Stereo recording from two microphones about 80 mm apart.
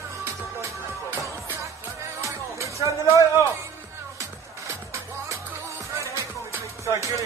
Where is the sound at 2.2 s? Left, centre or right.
Right.